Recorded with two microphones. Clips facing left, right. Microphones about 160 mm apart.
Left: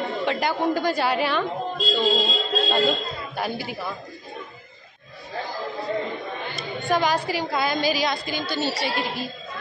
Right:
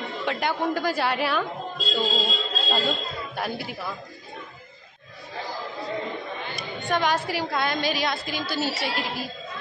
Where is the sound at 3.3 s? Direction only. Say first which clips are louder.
Left 3 dB; centre (ahead or behind).